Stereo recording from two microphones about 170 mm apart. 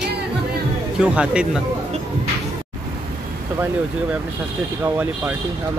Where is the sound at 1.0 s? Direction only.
5° right (ahead or behind).